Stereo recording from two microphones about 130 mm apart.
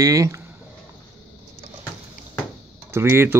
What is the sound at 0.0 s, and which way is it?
Speech, 25° right (ahead or behind).